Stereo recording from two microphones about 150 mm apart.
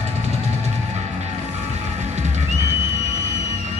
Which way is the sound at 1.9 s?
50° right (ahead or behind).